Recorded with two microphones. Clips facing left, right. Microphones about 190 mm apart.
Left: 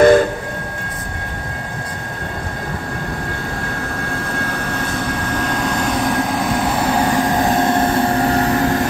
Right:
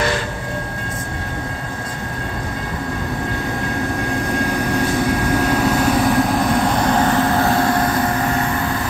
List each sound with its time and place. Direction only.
0.0 s train: 50° left (ahead or behind)
5.3 s vehicle: 5° right (ahead or behind); by 8.7 s 40° left (ahead or behind)